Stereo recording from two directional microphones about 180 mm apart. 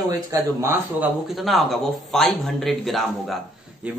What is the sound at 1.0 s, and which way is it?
Speech, centre (ahead or behind).